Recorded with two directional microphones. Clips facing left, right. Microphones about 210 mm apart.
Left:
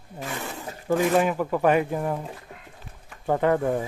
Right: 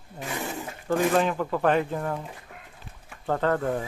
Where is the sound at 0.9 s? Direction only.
10° left (ahead or behind).